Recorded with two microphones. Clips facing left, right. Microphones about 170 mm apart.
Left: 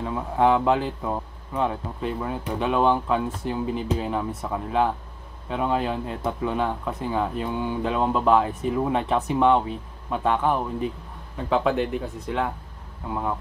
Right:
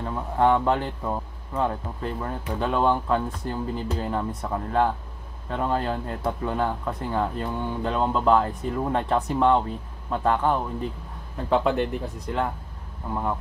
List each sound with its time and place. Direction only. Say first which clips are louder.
0.0 s speech: left 1 dB; 5° left (ahead or behind)